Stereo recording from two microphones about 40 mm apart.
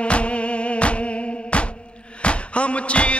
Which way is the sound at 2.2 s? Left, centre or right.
Left.